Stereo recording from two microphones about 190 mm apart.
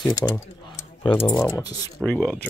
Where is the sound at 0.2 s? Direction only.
5° left (ahead or behind).